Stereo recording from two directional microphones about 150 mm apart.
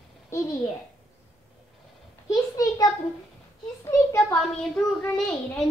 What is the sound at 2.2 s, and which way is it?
Speech, 25° left (ahead or behind).